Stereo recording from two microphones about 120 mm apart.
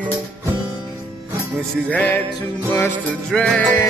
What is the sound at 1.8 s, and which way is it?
Music, 10° left (ahead or behind).